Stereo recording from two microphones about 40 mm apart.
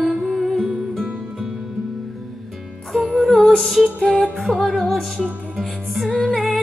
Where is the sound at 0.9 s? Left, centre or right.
Centre.